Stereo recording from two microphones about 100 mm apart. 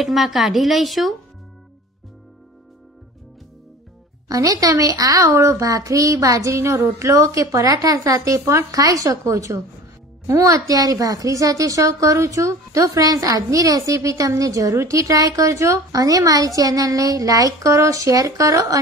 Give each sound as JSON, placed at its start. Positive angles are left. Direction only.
{"t": 0.0, "sound": "speech", "side_deg": 0}
{"t": 4.3, "sound": "a woman's voice", "side_deg": -35}